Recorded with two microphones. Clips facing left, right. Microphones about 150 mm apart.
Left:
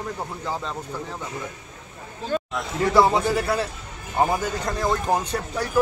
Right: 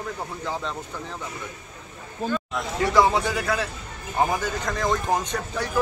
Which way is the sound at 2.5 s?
Centre (ahead or behind).